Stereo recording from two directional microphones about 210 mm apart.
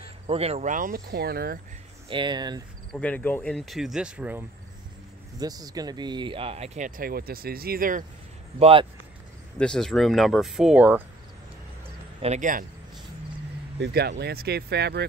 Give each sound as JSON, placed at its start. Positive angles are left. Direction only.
{"t": 0.0, "sound": "speech", "side_deg": -30}
{"t": 2.0, "sound": "speech", "side_deg": -20}
{"t": 2.9, "sound": "speech", "side_deg": 5}
{"t": 7.0, "sound": "speech", "side_deg": -45}
{"t": 8.5, "sound": "speech", "side_deg": -30}
{"t": 9.6, "sound": "speech", "side_deg": 5}
{"t": 12.2, "sound": "speech", "side_deg": -35}
{"t": 13.7, "sound": "speech", "side_deg": -50}